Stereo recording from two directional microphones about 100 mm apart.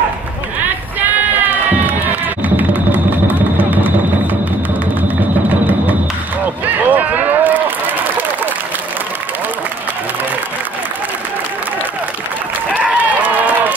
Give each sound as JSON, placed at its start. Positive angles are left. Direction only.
{"t": 1.4, "sound": "crowd", "side_deg": -15}
{"t": 2.4, "sound": "music", "side_deg": -15}
{"t": 6.4, "sound": "run", "side_deg": -15}
{"t": 12.8, "sound": "run", "side_deg": -15}